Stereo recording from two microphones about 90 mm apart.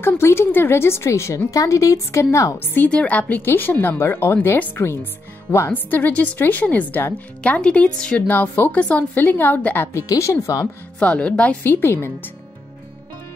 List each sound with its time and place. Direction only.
0.0 s speech: 25° left (ahead or behind)
2.6 s a woman's voice: 25° left (ahead or behind)
9.9 s speech: 35° left (ahead or behind)
11.0 s a woman's voice: 15° left (ahead or behind)
11.6 s speech: 25° left (ahead or behind)